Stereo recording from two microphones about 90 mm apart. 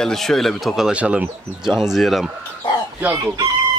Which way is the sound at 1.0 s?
15° right (ahead or behind).